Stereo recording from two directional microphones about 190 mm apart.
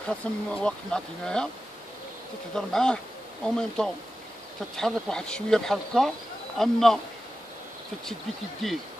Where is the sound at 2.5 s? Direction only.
5° left (ahead or behind).